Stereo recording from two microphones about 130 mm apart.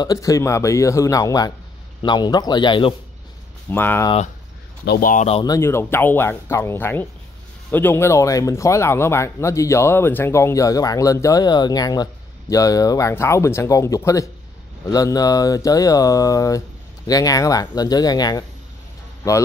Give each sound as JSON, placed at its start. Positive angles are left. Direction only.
{"t": 0.0, "sound": "a man's voice", "side_deg": 25}
{"t": 3.7, "sound": "speech", "side_deg": 15}
{"t": 5.0, "sound": "speech", "side_deg": 85}
{"t": 5.4, "sound": "speech", "side_deg": 25}